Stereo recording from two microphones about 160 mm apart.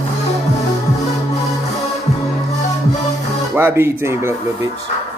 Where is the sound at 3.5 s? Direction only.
15° right (ahead or behind).